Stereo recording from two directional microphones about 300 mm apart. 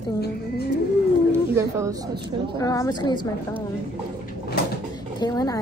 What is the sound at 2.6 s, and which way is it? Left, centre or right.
Speech, centre.